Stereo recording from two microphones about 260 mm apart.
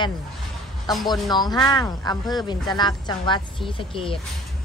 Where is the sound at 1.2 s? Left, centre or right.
Centre.